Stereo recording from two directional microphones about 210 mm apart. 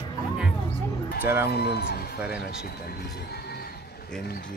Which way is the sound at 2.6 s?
45° left (ahead or behind).